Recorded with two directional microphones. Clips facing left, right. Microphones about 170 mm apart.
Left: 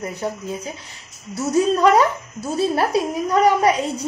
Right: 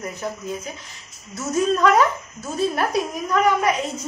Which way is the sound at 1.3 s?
35° left (ahead or behind).